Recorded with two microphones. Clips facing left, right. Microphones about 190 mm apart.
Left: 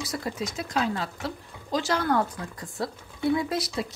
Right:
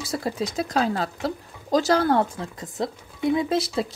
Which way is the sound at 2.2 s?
25° right (ahead or behind).